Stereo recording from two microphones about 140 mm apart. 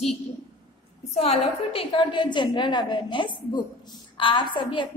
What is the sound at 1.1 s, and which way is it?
A woman's voice, 50° left (ahead or behind).